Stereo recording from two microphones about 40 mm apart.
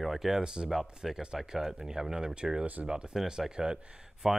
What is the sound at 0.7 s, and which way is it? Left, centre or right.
Speech, centre.